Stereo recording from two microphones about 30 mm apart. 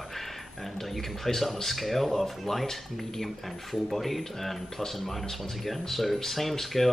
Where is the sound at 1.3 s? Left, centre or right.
Centre.